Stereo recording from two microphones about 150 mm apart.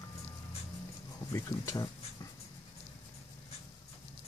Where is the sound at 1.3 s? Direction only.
20° left (ahead or behind).